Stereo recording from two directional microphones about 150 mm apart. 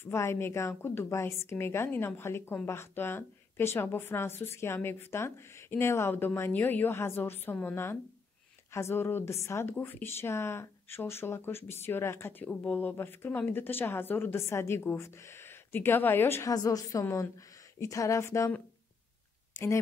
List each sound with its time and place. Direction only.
0.0 s a woman's voice: 15° left (ahead or behind)